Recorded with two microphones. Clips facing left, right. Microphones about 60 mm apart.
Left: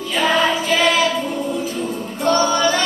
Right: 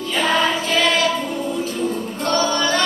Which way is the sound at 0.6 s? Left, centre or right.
Centre.